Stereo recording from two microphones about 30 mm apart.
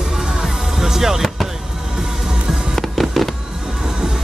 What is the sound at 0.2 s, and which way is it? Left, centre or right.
Music, centre.